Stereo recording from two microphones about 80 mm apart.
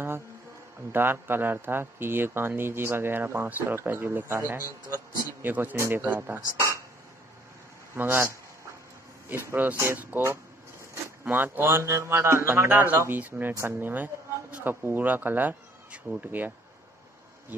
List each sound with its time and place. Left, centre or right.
0.9 s speech: right
7.9 s speech: right